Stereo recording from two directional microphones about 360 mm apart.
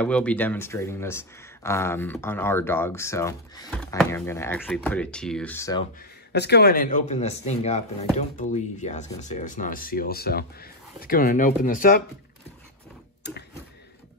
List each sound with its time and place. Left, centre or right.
0.0 s speech: centre
6.3 s speech: left